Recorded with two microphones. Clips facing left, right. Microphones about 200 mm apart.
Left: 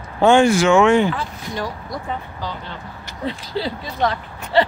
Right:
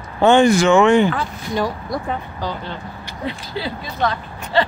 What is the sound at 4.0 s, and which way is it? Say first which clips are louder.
Speech: even; 25° left (ahead or behind).